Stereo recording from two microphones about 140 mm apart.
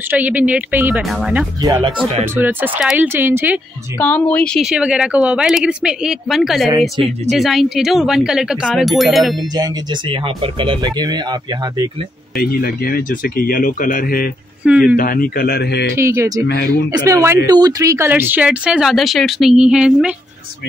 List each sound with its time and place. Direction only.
0.1 s a woman's voice: 10° right (ahead or behind)
1.0 s speech: centre (ahead or behind)
2.0 s a woman's voice: 15° right (ahead or behind)
4.0 s speech: 10° left (ahead or behind)
4.6 s speech: 5° right (ahead or behind)
9.6 s speech: 35° right (ahead or behind)
12.4 s speech: 90° left
14.6 s a woman's voice: 10° right (ahead or behind)
15.0 s speech: 90° left
15.9 s a woman's voice: 20° right (ahead or behind)